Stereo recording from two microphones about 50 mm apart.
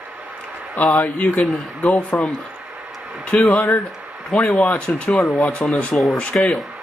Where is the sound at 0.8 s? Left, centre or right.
Left.